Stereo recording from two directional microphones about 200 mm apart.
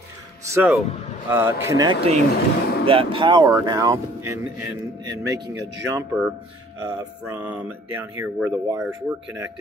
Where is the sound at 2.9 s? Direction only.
25° right (ahead or behind).